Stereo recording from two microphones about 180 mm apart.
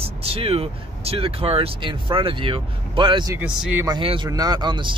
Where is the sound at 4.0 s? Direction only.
30° right (ahead or behind).